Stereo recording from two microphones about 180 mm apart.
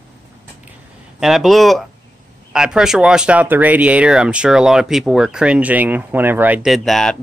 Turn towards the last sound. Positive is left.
turn(degrees=5)  # may be behind; listen again after turning